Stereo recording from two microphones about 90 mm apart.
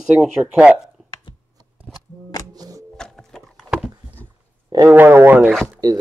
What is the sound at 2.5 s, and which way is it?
Music, 45° right (ahead or behind).